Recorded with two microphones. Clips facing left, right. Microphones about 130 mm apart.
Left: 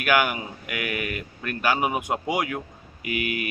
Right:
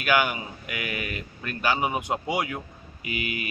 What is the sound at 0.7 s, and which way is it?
Speech, 25° right (ahead or behind).